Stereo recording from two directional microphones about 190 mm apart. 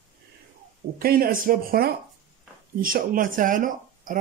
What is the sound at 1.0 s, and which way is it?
Speech, 50° right (ahead or behind).